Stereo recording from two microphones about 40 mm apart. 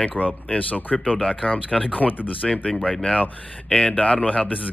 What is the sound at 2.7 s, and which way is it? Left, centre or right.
Speech, centre.